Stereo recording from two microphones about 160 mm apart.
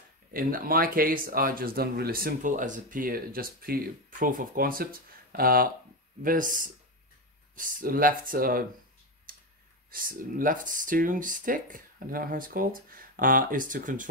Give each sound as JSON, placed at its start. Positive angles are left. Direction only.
{"t": 0.3, "sound": "speech", "side_deg": -65}
{"t": 9.3, "sound": "a sound", "side_deg": -65}
{"t": 9.8, "sound": "speech", "side_deg": -60}